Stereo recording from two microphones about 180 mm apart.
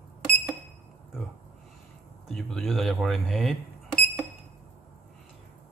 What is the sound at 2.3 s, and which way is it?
Speech, centre (ahead or behind).